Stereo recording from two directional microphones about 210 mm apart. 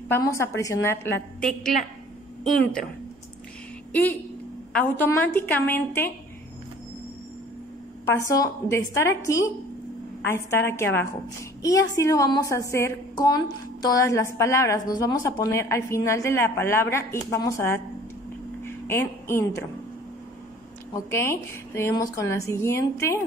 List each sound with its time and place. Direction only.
0.1 s a woman's voice: 15° left (ahead or behind)
3.9 s a woman's voice: 10° left (ahead or behind)
8.1 s a woman's voice: 15° left (ahead or behind)
21.1 s a woman's voice: 10° left (ahead or behind)